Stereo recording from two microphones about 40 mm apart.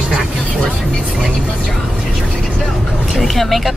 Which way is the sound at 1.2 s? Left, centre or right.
Left.